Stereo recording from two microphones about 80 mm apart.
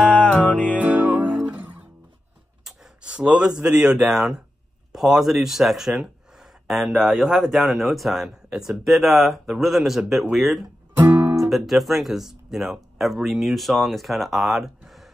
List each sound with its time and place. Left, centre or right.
0.1 s music: centre
0.7 s music: centre
2.6 s a man's voice: centre